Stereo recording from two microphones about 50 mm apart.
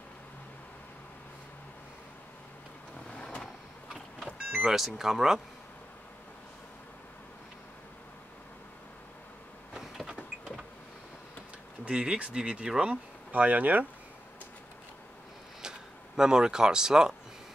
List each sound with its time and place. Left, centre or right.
3.1 s vehicle: left
4.6 s speech: centre
9.8 s vehicle: centre
11.8 s speech: right
12.9 s speech: right
16.2 s speech: centre